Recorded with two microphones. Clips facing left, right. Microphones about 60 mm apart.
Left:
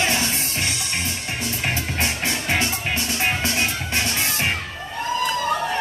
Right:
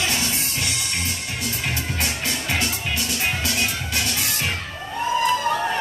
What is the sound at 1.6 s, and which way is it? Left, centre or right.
Music, left.